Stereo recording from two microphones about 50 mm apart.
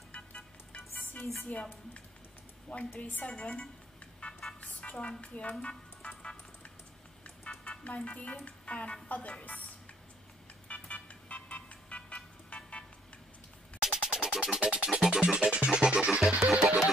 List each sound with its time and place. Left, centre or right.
1.2 s speech: left
3.0 s a woman's voice: left
3.3 s a woman's voice: left
4.2 s vehicle: centre
4.6 s music: left
4.9 s a woman's voice: centre
5.2 s a sound: left
7.4 s vehicle: left
8.5 s a woman's voice: left
10.7 s vehicle: left
13.8 s music: centre